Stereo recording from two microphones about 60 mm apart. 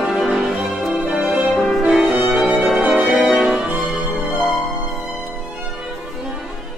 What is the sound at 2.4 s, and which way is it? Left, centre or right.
Music, centre.